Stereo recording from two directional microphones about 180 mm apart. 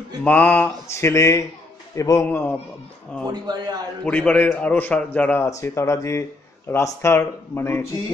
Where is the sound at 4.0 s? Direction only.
5° left (ahead or behind).